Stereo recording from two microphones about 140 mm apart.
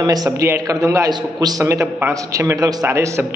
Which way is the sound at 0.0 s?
25° right (ahead or behind).